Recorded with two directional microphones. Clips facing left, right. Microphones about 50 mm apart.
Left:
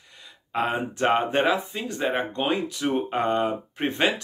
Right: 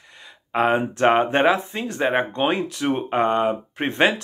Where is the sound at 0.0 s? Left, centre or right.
Right.